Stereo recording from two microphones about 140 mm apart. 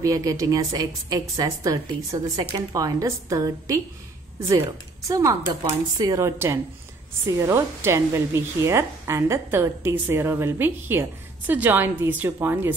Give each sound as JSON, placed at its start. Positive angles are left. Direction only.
{"t": 0.0, "sound": "a woman's voice", "side_deg": -25}
{"t": 5.0, "sound": "a woman's voice", "side_deg": -25}